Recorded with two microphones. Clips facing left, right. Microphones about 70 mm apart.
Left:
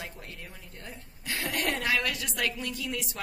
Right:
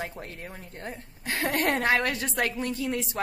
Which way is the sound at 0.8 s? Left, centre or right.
Right.